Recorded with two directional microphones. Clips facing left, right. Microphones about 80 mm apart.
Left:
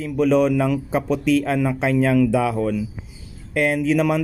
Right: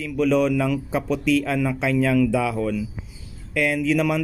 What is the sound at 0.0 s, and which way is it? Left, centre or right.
Speech, left.